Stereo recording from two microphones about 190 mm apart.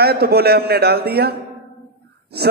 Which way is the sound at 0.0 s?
55° right (ahead or behind).